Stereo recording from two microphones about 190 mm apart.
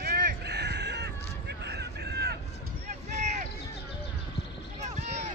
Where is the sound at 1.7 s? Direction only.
60° right (ahead or behind).